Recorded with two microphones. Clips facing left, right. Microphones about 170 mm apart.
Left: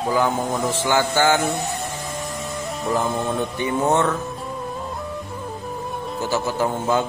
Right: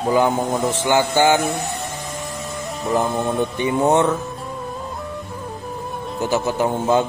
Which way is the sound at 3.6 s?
20° right (ahead or behind).